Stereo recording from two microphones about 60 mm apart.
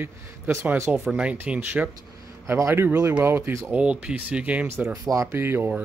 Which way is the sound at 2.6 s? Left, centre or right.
Right.